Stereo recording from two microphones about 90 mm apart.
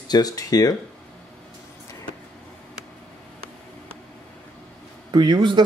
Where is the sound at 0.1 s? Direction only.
45° left (ahead or behind).